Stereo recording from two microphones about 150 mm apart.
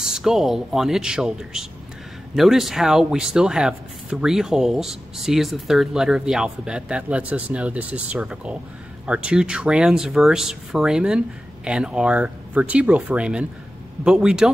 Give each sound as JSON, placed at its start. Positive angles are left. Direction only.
{"t": 0.0, "sound": "speech", "side_deg": -5}